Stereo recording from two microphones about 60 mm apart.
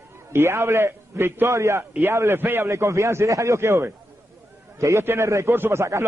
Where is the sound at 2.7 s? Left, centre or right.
Right.